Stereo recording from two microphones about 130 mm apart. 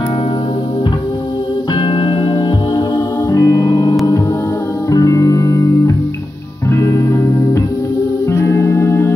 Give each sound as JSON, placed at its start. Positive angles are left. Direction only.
{"t": 1.8, "sound": "music", "side_deg": 40}
{"t": 3.3, "sound": "music", "side_deg": 25}
{"t": 4.9, "sound": "music", "side_deg": 25}